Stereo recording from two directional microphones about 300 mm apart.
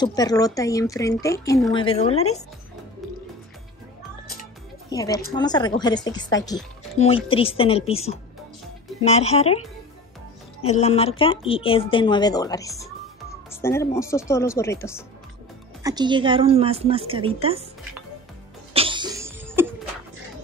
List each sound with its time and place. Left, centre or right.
0.0 s a woman's voice: centre
4.8 s a woman's voice: centre
15.8 s a woman's voice: centre
18.7 s cough: centre